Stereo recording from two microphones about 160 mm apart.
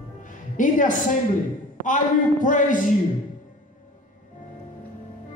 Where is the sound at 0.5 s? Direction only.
55° left (ahead or behind).